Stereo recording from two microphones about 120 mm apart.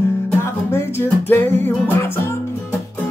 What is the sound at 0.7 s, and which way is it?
Music, 20° left (ahead or behind).